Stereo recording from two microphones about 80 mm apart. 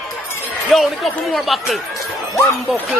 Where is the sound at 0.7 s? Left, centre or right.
Centre.